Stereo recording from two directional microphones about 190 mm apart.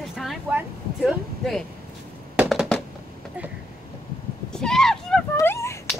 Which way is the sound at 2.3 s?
Centre (ahead or behind).